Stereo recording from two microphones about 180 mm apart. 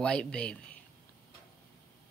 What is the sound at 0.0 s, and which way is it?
Speech, 5° left (ahead or behind).